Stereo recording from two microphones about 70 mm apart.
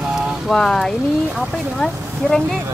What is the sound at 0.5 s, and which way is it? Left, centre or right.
Speech, centre.